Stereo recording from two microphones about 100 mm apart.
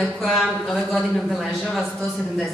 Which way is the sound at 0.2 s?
5° left (ahead or behind).